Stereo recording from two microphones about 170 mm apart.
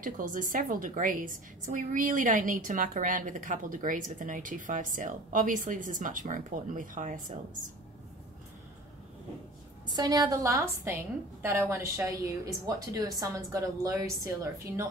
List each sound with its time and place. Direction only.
0.0 s a woman's voice: 55° right (ahead or behind)
9.9 s a woman's voice: 20° right (ahead or behind)